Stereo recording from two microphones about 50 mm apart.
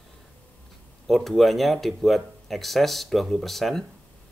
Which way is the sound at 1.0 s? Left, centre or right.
Centre.